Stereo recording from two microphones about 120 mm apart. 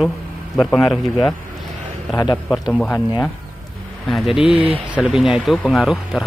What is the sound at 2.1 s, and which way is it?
Speech, 35° left (ahead or behind).